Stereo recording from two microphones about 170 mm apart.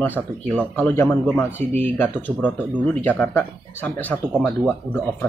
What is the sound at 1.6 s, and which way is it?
Speech, 40° right (ahead or behind).